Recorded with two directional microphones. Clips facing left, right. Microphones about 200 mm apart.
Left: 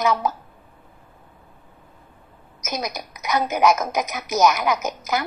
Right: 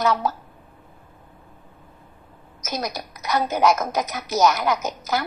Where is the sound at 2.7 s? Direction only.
15° left (ahead or behind).